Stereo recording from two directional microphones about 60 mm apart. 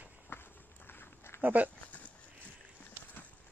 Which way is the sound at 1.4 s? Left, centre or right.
Right.